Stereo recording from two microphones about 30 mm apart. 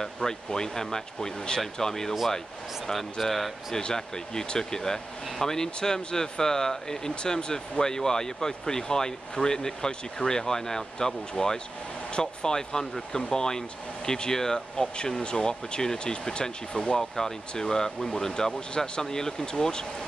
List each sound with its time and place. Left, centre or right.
0.0 s speech: left
2.9 s speech: centre
3.9 s speech: left